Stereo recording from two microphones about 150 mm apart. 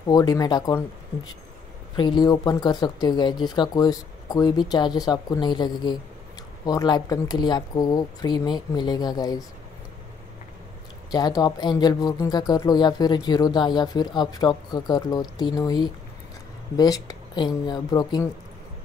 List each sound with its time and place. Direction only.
0.1 s speech: 25° left (ahead or behind)
2.0 s speech: 30° left (ahead or behind)
11.1 s speech: 25° left (ahead or behind)